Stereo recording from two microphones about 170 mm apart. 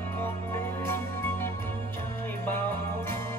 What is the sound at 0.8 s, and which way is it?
Music, 15° left (ahead or behind).